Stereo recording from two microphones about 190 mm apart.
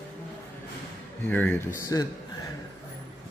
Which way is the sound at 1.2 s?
10° left (ahead or behind).